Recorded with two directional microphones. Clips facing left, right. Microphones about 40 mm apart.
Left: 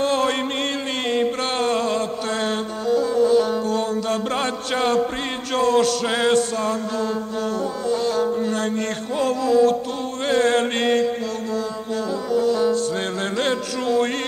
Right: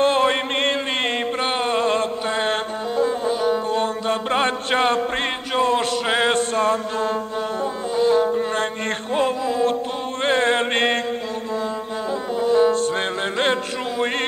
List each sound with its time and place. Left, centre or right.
0.0 s a sound: right
1.4 s a sound: right
2.2 s music: right
2.5 s brass instrument: right
3.6 s music: right
7.9 s music: right
10.2 s mantra: right
12.1 s brass instrument: right
13.2 s music: right